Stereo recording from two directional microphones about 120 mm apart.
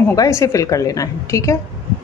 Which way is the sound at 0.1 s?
30° left (ahead or behind).